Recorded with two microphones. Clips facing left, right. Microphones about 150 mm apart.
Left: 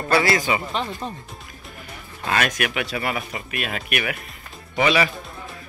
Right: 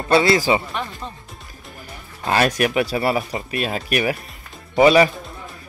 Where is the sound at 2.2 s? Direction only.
35° right (ahead or behind).